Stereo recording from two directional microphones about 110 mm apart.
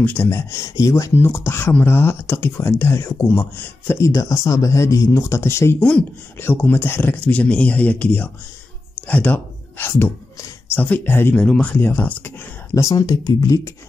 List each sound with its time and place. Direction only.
0.0 s speech: 20° left (ahead or behind)
11.4 s speech: 5° left (ahead or behind)
12.7 s speech: 35° left (ahead or behind)